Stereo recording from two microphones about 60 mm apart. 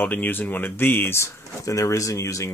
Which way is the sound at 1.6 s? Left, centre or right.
Left.